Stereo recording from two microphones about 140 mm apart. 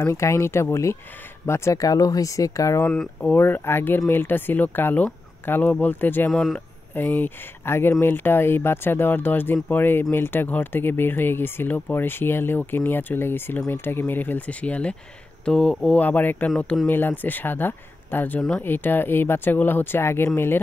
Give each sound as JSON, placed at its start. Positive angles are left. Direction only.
{"t": 0.0, "sound": "speech", "side_deg": 20}
{"t": 2.9, "sound": "speech", "side_deg": 10}
{"t": 6.3, "sound": "speech", "side_deg": 0}
{"t": 7.0, "sound": "speech", "side_deg": 15}